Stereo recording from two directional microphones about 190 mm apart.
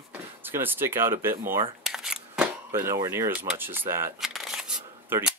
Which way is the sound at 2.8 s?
15° right (ahead or behind).